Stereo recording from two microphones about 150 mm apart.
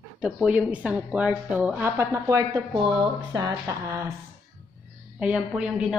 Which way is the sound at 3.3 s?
20° right (ahead or behind).